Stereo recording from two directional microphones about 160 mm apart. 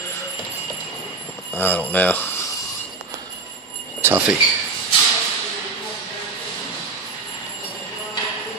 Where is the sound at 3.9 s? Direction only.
15° right (ahead or behind).